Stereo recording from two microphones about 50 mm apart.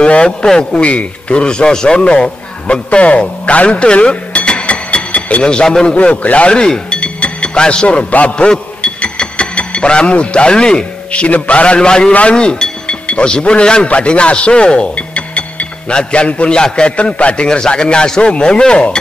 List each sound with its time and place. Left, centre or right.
0.0 s a man's voice: centre
5.9 s speech: left
8.5 s a sound: centre
11.1 s a man's voice: left